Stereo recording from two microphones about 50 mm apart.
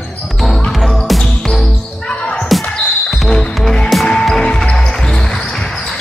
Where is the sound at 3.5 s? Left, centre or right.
Centre.